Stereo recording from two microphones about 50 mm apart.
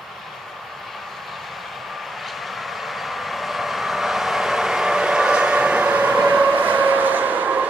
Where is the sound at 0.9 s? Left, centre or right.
Centre.